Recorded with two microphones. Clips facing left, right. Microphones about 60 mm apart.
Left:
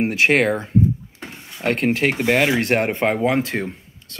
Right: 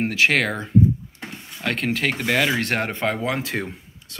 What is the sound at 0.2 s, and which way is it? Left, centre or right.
Speech, left.